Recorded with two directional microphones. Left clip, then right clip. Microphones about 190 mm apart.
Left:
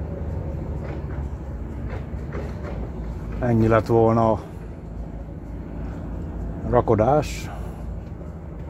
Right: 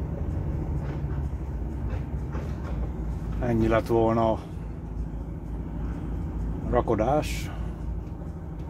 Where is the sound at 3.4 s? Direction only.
40° left (ahead or behind).